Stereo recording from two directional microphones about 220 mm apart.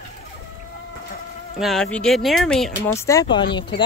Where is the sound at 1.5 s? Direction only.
Centre (ahead or behind).